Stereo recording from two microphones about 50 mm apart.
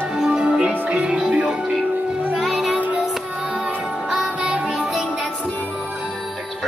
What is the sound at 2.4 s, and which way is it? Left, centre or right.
Music, centre.